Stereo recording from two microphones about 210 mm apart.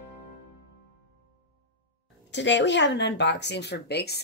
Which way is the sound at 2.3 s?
55° left (ahead or behind).